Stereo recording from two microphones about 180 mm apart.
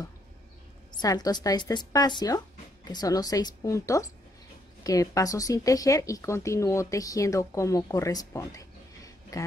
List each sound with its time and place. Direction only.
0.9 s speech: 20° left (ahead or behind)